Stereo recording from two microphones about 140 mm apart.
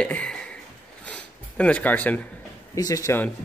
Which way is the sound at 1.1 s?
10° left (ahead or behind).